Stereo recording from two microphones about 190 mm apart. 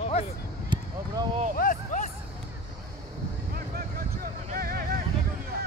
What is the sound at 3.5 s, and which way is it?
Vehicle, 50° right (ahead or behind).